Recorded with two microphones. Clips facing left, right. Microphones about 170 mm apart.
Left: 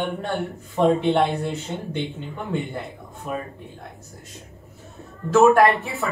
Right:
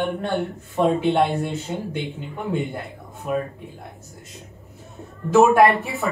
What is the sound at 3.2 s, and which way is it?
Speech, 5° right (ahead or behind).